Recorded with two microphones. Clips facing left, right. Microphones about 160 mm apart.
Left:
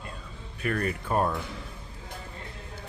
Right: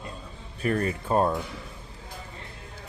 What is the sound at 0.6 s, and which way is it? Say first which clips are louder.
Speech: right 3 dB; 30° right (ahead or behind).